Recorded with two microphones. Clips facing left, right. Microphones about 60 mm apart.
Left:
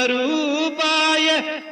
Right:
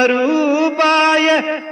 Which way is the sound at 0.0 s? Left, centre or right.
Right.